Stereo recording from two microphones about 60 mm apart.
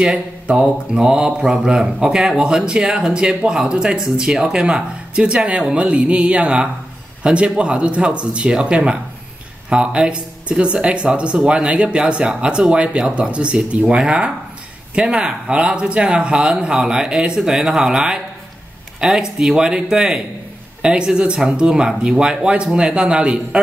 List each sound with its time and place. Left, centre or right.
0.0 s speech: centre